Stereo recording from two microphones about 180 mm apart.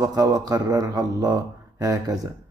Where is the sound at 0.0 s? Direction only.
20° right (ahead or behind).